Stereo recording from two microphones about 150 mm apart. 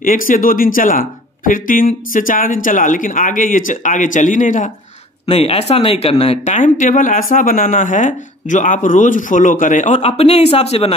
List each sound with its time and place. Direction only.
0.0 s speech: 65° left (ahead or behind)
5.2 s speech: 40° left (ahead or behind)